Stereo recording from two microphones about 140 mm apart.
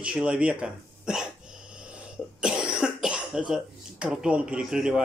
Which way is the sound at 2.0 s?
5° right (ahead or behind).